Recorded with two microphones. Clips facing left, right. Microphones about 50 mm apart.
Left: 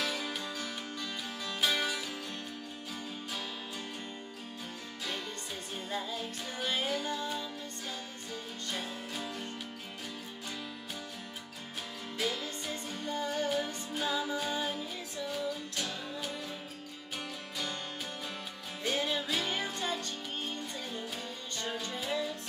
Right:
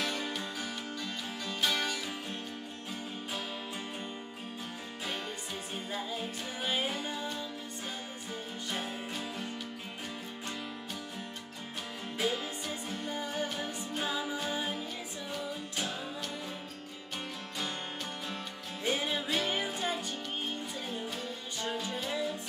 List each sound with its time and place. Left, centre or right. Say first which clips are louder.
0.0 s music: right 1 dB; centre
5.9 s music: left 1 dB; centre
8.6 s music: right 1 dB; centre
9.1 s music: right 1 dB; centre
12.2 s music: right 2 dB; centre
12.8 s music: left 3 dB; centre
18.9 s music: even; centre